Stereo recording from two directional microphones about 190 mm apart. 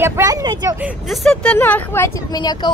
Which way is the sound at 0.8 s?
5° right (ahead or behind).